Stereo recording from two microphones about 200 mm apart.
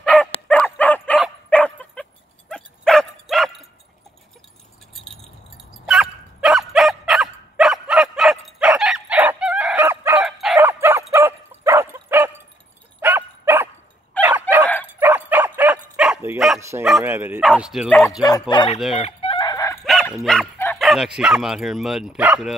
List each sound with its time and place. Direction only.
0.0 s dog: 5° left (ahead or behind)
5.9 s dog: centre (ahead or behind)
14.2 s dog: 10° left (ahead or behind)
15.0 s dog: 10° right (ahead or behind)
17.1 s speech: 10° right (ahead or behind)
17.4 s speech: centre (ahead or behind)
18.5 s speech: 20° left (ahead or behind)
18.9 s chicken: 30° left (ahead or behind)
19.8 s dog: centre (ahead or behind)
20.2 s bow-wow: 5° left (ahead or behind)
20.8 s speech: centre (ahead or behind)